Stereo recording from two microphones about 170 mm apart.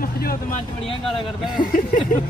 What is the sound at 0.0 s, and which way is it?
Speech, 60° left (ahead or behind).